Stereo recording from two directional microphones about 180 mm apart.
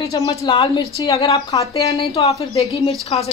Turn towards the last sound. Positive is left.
turn(degrees=35)  # may be behind; listen again after turning